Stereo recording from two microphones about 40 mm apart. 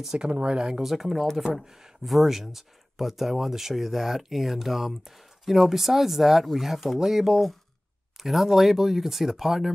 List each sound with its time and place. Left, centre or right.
0.0 s speech: centre
0.3 s speech: right
0.8 s speech: centre